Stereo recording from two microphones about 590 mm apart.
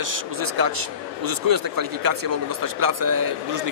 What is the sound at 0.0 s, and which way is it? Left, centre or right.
A man's voice, right.